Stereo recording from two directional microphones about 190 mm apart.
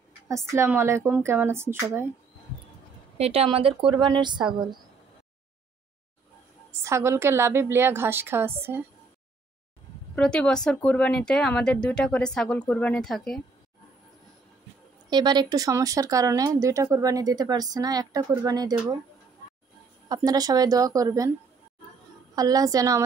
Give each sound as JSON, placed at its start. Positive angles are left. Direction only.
{"t": 0.5, "sound": "a woman's voice", "side_deg": -15}
{"t": 3.2, "sound": "a woman's voice", "side_deg": -30}
{"t": 6.7, "sound": "a woman's voice", "side_deg": -15}
{"t": 10.1, "sound": "speech", "side_deg": 5}
{"t": 15.0, "sound": "speech", "side_deg": -25}
{"t": 20.1, "sound": "speech", "side_deg": -20}
{"t": 22.3, "sound": "speech", "side_deg": -20}